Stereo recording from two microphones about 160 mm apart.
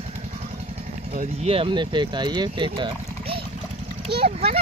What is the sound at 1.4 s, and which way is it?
A child's voice, 35° right (ahead or behind).